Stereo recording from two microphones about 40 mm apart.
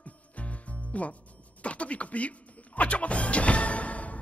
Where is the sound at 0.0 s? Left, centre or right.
Left.